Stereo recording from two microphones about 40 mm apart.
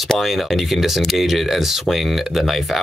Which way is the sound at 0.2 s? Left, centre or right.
Centre.